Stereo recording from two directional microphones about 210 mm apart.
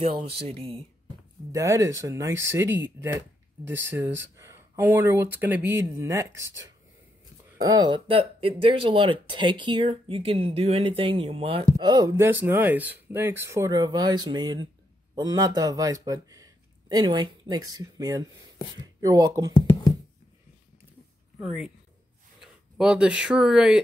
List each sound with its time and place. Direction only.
0.0 s speech: 25° right (ahead or behind)
1.5 s speech: 15° right (ahead or behind)
3.9 s speech: 15° right (ahead or behind)
7.6 s speech: 20° right (ahead or behind)
22.4 s speech: 5° right (ahead or behind)